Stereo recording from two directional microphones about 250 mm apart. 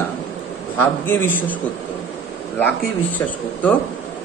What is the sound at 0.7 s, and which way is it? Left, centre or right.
Speech, centre.